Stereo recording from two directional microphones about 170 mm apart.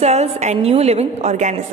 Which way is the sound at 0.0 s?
40° right (ahead or behind).